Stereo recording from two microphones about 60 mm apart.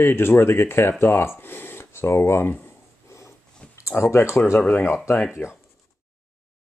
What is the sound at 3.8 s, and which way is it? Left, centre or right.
Speech, left.